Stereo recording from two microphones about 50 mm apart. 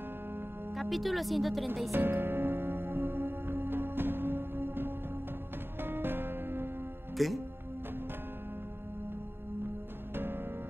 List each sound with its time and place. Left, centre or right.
0.7 s speech: centre
1.9 s music: right
7.2 s music: centre
10.1 s music: right